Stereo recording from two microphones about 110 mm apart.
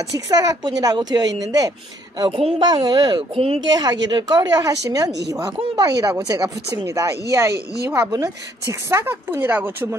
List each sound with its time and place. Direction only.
0.3 s speech: 35° right (ahead or behind); by 3.5 s 55° right (ahead or behind)
3.6 s a woman's voice: 40° right (ahead or behind); by 9.9 s 20° right (ahead or behind)